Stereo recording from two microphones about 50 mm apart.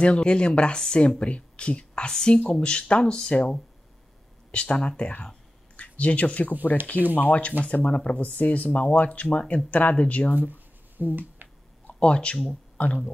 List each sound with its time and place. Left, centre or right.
0.0 s speech: left
11.0 s a sound: right
11.9 s speech: left